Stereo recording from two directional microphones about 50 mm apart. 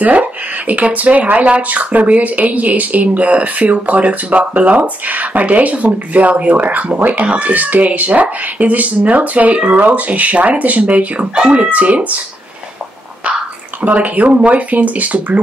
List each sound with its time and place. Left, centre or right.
0.0 s speech: right
13.8 s speech: right